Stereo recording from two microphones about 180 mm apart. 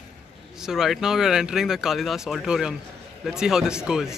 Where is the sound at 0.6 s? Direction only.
Centre (ahead or behind).